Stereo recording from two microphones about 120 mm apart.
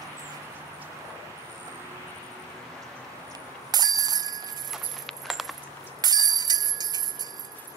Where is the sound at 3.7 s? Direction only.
35° right (ahead or behind).